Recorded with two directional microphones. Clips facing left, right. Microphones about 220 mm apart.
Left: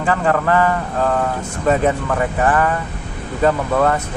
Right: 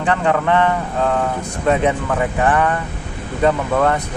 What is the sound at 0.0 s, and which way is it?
A man's voice, 5° left (ahead or behind).